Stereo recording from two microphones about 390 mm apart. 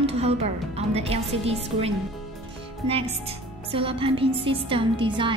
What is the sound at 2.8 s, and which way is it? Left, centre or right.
A woman's voice, centre.